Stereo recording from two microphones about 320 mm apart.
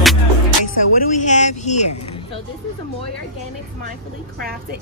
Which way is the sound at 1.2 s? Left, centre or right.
Left.